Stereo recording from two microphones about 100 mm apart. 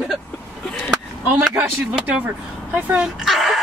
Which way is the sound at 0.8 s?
10° right (ahead or behind).